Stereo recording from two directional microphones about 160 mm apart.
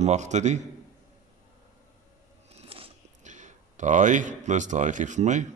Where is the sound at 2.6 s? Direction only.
35° right (ahead or behind).